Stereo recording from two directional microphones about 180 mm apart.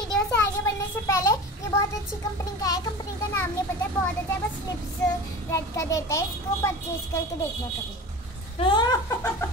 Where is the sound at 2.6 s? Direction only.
20° left (ahead or behind).